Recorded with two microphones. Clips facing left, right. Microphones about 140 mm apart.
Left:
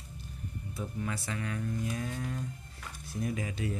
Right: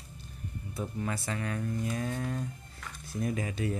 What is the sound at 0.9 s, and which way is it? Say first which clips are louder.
Speech: right 2 dB; 45° right (ahead or behind).